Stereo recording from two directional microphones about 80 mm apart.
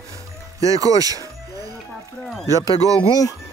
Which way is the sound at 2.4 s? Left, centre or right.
Right.